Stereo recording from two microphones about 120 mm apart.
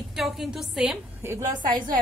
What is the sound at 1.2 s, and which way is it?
Speech, 20° right (ahead or behind).